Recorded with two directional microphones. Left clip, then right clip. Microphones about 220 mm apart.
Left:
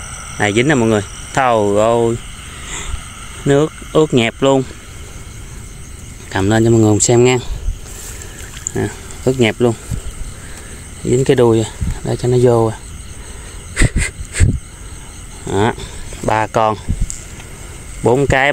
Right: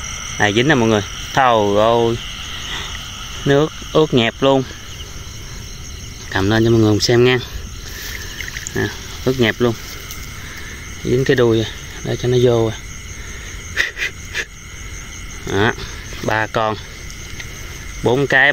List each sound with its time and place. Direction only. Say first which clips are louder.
0.4 s speech: left 1 dB; 10° left (ahead or behind)
3.4 s speech: left 2 dB; 10° left (ahead or behind)
6.3 s speech: left 2 dB; 15° left (ahead or behind)
9.4 s speech: left 2 dB; 10° left (ahead or behind)
11.1 s speech: left 3 dB; 15° left (ahead or behind)
13.7 s wheeze: right 1 dB; 15° left (ahead or behind)
15.4 s a sound: left 1 dB; 10° left (ahead or behind)
18.0 s speech: left 1 dB; 10° left (ahead or behind)